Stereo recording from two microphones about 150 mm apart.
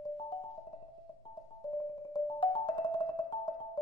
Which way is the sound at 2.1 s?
30° left (ahead or behind).